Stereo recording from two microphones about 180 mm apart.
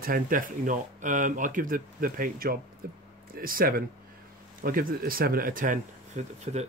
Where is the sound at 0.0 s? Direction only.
50° right (ahead or behind).